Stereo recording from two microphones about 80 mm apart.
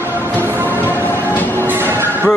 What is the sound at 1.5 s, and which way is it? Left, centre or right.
Train, right.